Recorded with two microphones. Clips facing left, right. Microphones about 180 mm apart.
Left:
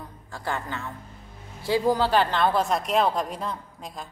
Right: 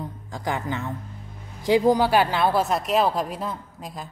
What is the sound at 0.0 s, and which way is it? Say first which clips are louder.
Speech: right 4 dB; 15° right (ahead or behind).